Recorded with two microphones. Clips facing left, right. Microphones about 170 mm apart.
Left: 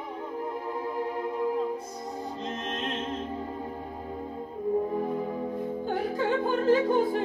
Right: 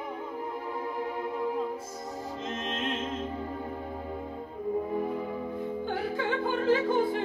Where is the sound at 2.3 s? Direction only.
35° left (ahead or behind).